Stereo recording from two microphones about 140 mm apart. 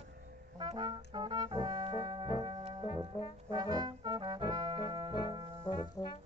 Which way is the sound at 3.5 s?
30° right (ahead or behind).